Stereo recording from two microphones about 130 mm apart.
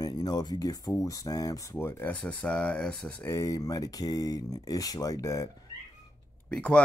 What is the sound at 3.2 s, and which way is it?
Speech, 25° left (ahead or behind).